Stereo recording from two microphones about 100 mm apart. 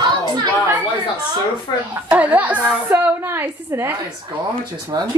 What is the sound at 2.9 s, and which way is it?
A woman's voice, 25° right (ahead or behind).